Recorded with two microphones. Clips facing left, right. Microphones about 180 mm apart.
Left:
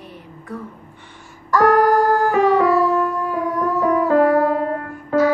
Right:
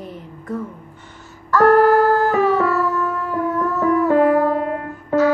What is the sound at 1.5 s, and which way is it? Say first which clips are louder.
Music: right 2 dB; 15° left (ahead or behind).